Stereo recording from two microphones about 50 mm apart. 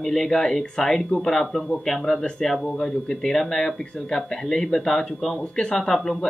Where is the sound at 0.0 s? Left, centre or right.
Centre.